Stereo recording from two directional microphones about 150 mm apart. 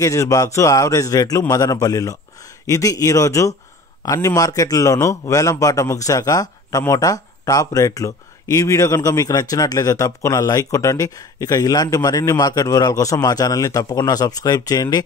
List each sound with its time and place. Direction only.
0.0 s a man's voice: 20° left (ahead or behind)